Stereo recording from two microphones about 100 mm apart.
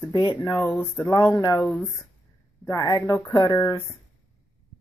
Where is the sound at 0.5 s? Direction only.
20° left (ahead or behind).